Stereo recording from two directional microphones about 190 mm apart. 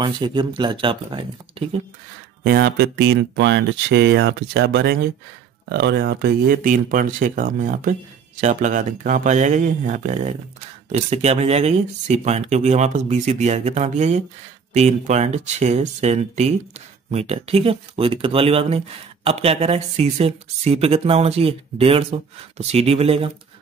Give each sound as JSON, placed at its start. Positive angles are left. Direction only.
{"t": 0.0, "sound": "speech", "side_deg": -25}
{"t": 2.4, "sound": "speech", "side_deg": -55}